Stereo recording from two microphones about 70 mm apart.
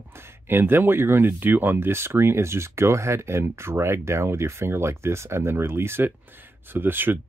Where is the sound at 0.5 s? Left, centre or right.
Right.